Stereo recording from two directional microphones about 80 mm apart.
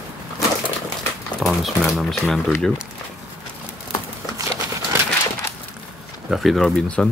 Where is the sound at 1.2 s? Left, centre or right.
Centre.